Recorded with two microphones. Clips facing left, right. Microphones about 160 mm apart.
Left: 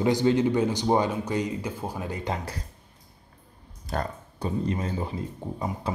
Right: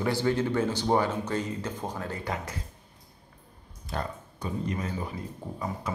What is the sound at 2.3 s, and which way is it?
Speech, 30° left (ahead or behind).